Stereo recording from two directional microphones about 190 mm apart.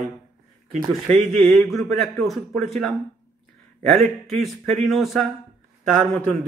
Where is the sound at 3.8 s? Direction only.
Centre (ahead or behind).